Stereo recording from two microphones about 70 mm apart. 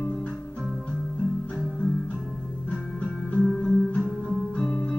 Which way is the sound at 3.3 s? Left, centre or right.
Centre.